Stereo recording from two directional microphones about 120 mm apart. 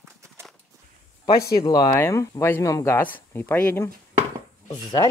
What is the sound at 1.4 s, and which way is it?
Speech, 35° left (ahead or behind).